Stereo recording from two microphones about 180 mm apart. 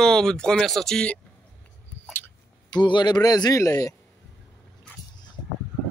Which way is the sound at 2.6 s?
25° left (ahead or behind).